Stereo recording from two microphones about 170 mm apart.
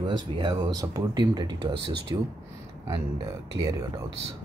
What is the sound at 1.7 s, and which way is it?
Speech, 90° right.